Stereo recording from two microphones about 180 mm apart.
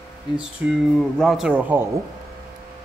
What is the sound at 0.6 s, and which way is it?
Speech, 10° right (ahead or behind).